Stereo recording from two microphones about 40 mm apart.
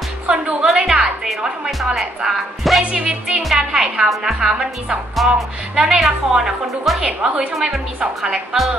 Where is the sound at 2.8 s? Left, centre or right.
Right.